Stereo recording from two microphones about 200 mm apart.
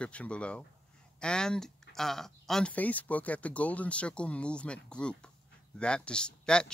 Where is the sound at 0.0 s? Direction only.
5° left (ahead or behind).